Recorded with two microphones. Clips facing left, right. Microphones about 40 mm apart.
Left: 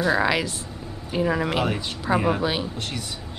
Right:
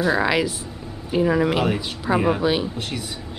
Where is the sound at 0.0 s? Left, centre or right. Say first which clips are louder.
Right 2 dB; centre.